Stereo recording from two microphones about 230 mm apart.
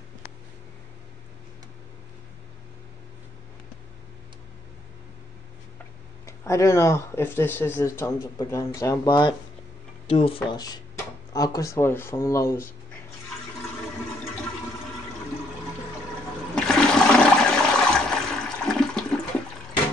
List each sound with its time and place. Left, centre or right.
6.2 s speech: centre
16.5 s toilet flush: centre